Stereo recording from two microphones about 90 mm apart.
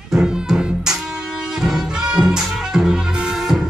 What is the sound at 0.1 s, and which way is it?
Music, 10° right (ahead or behind).